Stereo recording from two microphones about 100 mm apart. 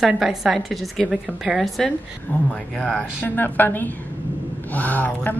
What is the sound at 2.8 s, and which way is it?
Speech, centre (ahead or behind).